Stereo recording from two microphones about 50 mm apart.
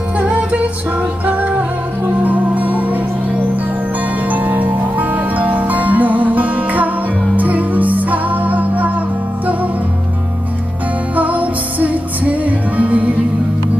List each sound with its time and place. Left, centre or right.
0.2 s music: right
4.3 s music: right
11.1 s music: right